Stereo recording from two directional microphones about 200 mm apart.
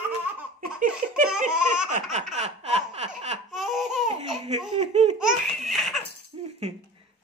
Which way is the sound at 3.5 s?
Centre (ahead or behind).